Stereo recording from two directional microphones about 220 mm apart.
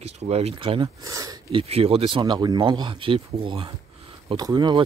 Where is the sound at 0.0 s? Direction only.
30° right (ahead or behind).